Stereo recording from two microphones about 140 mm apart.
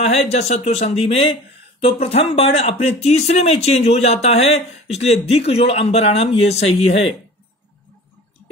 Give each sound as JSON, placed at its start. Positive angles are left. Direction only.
{"t": 0.0, "sound": "speech", "side_deg": 50}